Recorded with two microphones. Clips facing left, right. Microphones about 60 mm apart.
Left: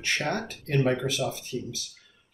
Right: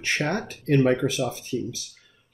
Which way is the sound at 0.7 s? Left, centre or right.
Right.